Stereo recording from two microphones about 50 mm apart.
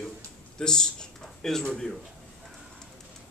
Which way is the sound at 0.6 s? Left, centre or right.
Centre.